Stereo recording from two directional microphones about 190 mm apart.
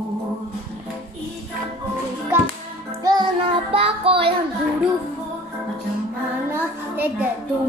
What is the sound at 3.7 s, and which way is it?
Child singing, 30° right (ahead or behind).